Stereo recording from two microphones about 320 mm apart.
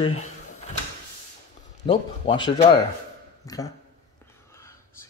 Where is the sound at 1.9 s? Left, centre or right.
Centre.